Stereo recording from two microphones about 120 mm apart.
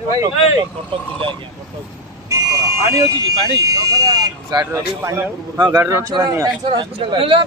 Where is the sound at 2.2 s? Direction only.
25° right (ahead or behind).